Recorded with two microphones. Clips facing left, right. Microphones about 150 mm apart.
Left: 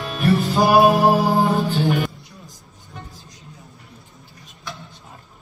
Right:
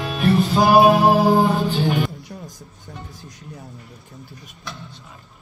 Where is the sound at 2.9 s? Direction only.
65° right (ahead or behind).